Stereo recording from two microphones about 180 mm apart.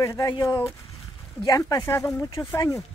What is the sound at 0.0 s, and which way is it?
Speech, 15° left (ahead or behind).